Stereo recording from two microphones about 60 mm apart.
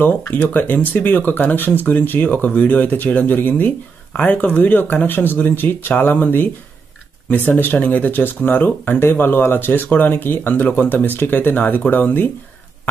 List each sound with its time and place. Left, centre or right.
0.0 s speech: left